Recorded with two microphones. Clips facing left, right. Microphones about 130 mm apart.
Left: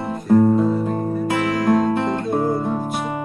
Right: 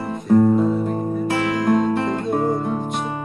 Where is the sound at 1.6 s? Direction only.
Centre (ahead or behind).